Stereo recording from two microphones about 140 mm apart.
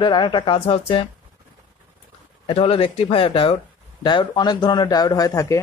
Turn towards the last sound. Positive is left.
turn(degrees=20)  # may be behind; listen again after turning